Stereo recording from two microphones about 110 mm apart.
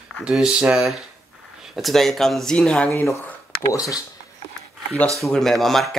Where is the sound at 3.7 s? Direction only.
30° left (ahead or behind).